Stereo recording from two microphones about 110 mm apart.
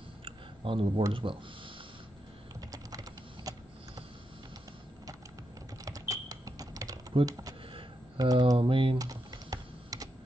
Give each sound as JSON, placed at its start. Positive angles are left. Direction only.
{"t": 0.2, "sound": "a sound", "side_deg": -50}
{"t": 1.1, "sound": "speech", "side_deg": -55}
{"t": 2.7, "sound": "typing", "side_deg": -35}
{"t": 5.9, "sound": "typing", "side_deg": -30}
{"t": 7.2, "sound": "speech", "side_deg": -35}
{"t": 8.5, "sound": "speech", "side_deg": -55}
{"t": 8.9, "sound": "typing", "side_deg": -35}